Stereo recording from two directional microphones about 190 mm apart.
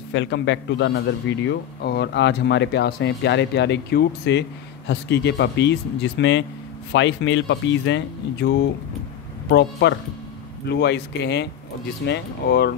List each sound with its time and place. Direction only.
0.1 s a man's voice: 70° left (ahead or behind)